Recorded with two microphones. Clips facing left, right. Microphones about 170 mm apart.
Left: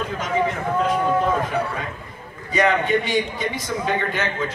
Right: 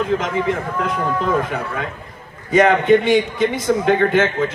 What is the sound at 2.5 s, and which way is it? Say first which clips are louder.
A man's voice: right 7 dB; 50° right (ahead or behind).